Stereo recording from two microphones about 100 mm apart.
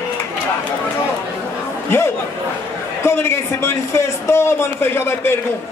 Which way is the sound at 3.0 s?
25° left (ahead or behind).